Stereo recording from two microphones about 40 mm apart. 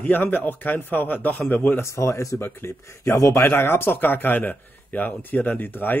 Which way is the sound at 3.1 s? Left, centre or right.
Left.